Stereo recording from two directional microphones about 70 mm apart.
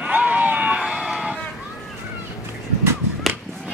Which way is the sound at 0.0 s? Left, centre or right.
Right.